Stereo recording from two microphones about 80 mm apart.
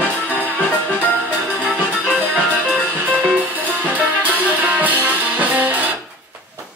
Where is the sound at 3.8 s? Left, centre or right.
Centre.